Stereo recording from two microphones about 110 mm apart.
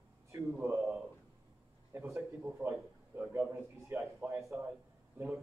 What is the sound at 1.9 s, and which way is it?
A man's voice, 25° right (ahead or behind).